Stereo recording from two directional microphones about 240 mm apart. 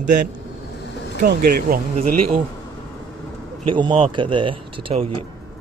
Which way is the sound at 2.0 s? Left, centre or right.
Right.